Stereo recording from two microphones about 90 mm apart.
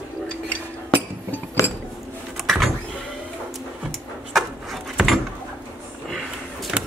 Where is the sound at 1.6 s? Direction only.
35° left (ahead or behind).